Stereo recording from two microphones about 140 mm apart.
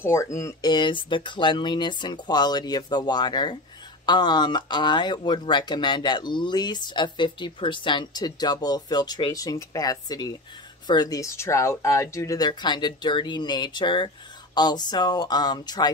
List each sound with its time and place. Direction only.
0.0 s speech: 20° left (ahead or behind)